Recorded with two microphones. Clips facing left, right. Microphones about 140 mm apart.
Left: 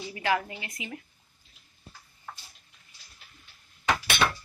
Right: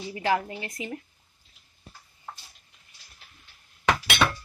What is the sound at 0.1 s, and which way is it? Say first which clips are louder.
Speech: right 2 dB; 30° right (ahead or behind).